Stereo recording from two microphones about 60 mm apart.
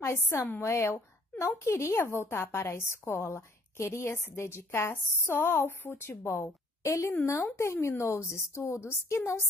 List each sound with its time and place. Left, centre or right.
0.0 s a woman's voice: left